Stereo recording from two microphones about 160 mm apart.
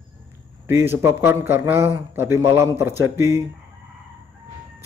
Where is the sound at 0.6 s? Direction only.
15° right (ahead or behind).